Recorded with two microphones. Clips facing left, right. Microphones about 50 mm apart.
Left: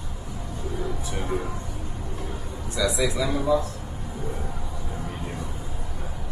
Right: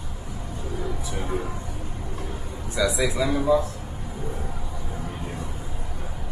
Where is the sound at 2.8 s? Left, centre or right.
Centre.